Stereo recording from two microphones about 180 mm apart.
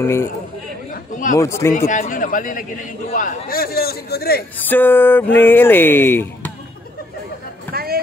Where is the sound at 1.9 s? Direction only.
45° left (ahead or behind).